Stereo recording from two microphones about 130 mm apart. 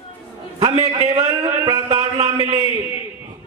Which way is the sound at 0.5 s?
50° right (ahead or behind).